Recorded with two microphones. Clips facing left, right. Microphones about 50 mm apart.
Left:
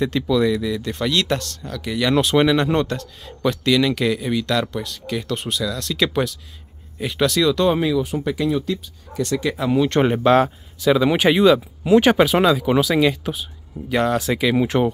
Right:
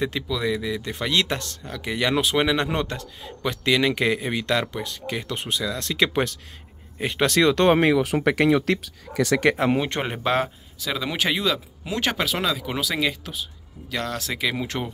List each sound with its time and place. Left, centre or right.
0.3 s speech: centre
2.1 s a man's voice: centre; by 8.0 s right
8.0 s speech: right
9.5 s speech: right
9.9 s speech: centre
13.2 s speech: centre